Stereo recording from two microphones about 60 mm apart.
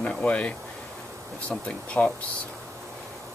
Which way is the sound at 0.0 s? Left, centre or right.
Centre.